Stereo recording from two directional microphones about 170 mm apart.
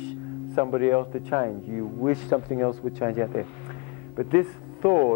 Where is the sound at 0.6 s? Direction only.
35° right (ahead or behind).